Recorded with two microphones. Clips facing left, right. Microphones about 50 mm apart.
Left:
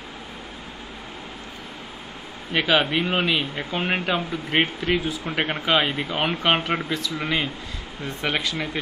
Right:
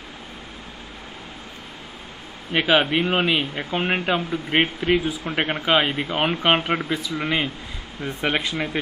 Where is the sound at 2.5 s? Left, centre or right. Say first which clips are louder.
Right 2 dB; centre.